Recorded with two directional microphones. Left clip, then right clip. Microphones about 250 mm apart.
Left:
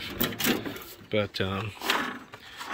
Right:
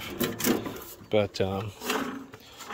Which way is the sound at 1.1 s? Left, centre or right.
Centre.